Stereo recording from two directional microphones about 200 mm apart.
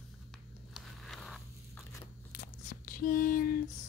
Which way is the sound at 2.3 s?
45° left (ahead or behind).